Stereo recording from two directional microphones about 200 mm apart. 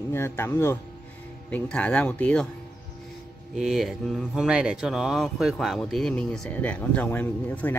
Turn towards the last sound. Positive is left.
turn(degrees=10)  # may be behind; listen again after turning